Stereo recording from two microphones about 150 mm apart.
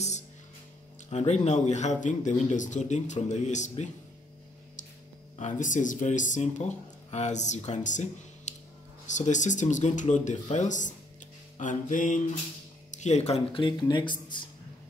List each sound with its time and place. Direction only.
1.1 s speech: 45° left (ahead or behind)
5.4 s speech: 60° left (ahead or behind); by 14.4 s 30° left (ahead or behind)